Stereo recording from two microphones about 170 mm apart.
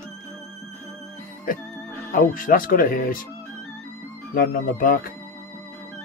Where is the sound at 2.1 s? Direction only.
55° left (ahead or behind).